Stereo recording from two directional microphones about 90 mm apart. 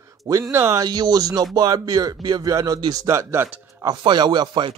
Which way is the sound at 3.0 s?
30° right (ahead or behind).